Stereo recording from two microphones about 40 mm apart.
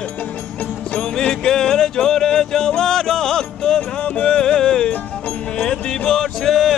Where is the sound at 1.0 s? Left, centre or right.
Centre.